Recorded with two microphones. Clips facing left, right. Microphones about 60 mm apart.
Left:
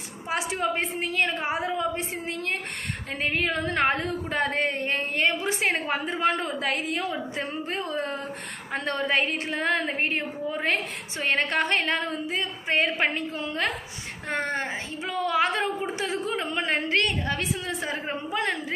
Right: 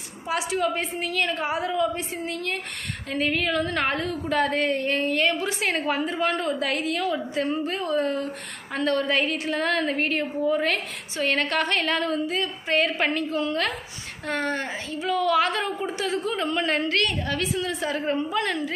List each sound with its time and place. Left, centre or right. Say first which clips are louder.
0.3 s a woman's voice: right 2 dB; left